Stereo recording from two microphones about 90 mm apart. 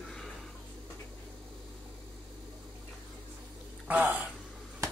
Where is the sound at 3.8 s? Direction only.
15° right (ahead or behind).